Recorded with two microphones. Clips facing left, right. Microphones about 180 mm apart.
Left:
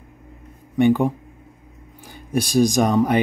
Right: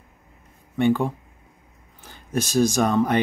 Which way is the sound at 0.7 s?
15° left (ahead or behind).